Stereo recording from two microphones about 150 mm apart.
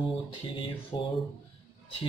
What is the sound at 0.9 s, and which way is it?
Speech, 35° left (ahead or behind).